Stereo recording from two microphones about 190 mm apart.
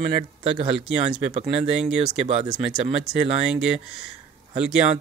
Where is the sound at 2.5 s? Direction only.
30° right (ahead or behind).